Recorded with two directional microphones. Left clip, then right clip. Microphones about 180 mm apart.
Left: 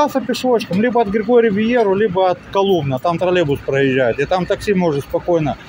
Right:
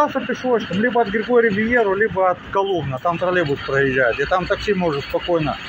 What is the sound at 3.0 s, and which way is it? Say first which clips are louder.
Speech: left 3 dB; 50° left (ahead or behind).